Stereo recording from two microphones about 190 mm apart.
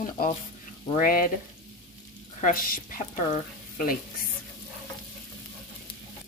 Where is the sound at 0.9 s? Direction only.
50° left (ahead or behind).